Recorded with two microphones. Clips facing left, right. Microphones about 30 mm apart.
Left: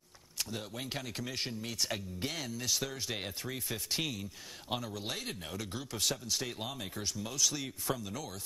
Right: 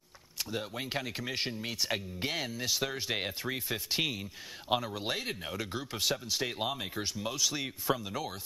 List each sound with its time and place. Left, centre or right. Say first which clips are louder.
0.4 s speech: right 3 dB; right